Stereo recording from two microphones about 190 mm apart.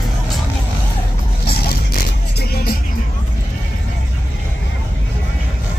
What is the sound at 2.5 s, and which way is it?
Music, 55° left (ahead or behind).